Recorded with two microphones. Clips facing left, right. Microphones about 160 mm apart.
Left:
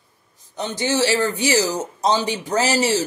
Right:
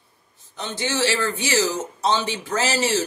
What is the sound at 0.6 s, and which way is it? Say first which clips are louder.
A woman's voice: left 3 dB; 15° left (ahead or behind).